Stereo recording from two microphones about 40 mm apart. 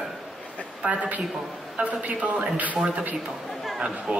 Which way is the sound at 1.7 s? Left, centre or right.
Right.